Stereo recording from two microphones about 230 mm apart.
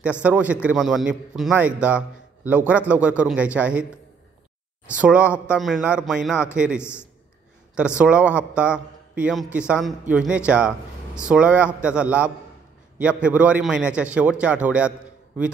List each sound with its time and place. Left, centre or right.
0.2 s a man's voice: centre
4.8 s a man's voice: centre
6.8 s a man's voice: centre
7.7 s a man's voice: centre